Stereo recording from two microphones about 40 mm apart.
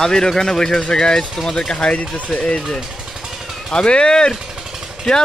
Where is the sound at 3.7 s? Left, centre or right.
Left.